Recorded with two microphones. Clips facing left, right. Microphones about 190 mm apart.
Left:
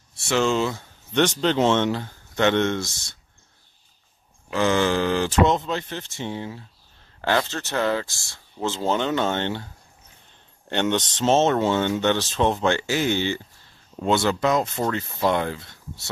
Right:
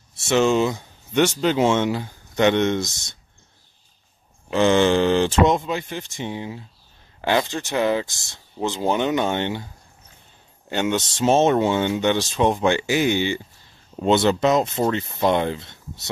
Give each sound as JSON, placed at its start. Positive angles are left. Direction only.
{"t": 0.3, "sound": "speech", "side_deg": -15}
{"t": 4.5, "sound": "speech", "side_deg": -25}
{"t": 5.5, "sound": "speech", "side_deg": -10}
{"t": 10.7, "sound": "speech", "side_deg": -5}